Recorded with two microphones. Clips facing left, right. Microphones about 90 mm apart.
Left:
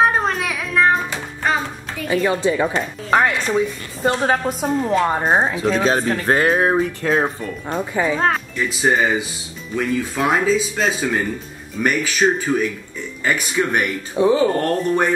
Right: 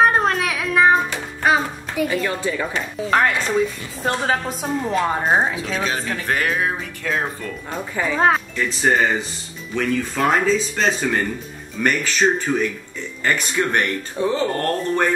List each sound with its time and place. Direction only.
0.0 s music: centre (ahead or behind)
1.4 s a sound: 10° right (ahead or behind)
2.2 s speech: 20° left (ahead or behind)
3.1 s a woman's voice: 5° left (ahead or behind)
6.0 s speech: 35° left (ahead or behind)
7.9 s a woman's voice: 15° left (ahead or behind)